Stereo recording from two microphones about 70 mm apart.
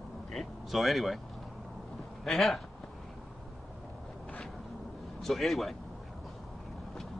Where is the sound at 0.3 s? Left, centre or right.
Centre.